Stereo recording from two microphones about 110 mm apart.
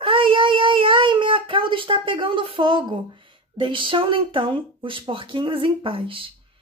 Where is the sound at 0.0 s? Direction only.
50° right (ahead or behind).